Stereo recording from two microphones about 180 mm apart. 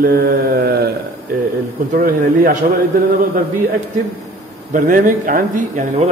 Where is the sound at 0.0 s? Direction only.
55° right (ahead or behind).